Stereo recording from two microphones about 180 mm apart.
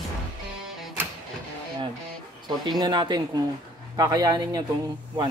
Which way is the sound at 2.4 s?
25° right (ahead or behind).